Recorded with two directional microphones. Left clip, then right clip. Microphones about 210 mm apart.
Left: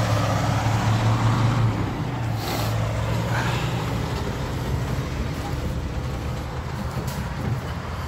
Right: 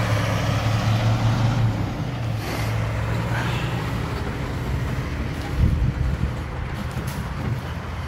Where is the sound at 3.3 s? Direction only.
Centre (ahead or behind).